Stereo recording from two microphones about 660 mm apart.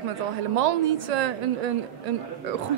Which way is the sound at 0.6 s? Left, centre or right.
Right.